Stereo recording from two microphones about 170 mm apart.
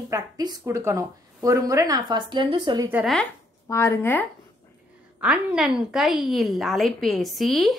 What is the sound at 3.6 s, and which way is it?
Speech, 15° left (ahead or behind).